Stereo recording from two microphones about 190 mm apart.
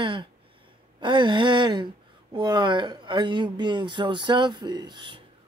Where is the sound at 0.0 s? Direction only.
25° right (ahead or behind).